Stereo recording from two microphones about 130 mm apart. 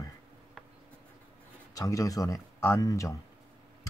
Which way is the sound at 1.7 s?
25° left (ahead or behind).